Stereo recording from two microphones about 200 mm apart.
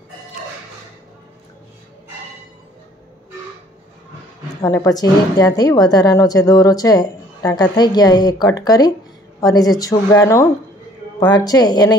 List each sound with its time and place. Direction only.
4.6 s a woman's voice: 20° left (ahead or behind)